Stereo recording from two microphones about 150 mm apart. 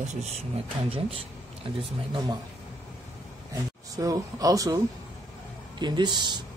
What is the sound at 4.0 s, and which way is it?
Speech, 25° right (ahead or behind).